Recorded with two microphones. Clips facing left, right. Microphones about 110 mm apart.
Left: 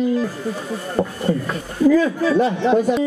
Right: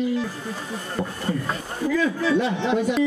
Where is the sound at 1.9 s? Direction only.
40° left (ahead or behind).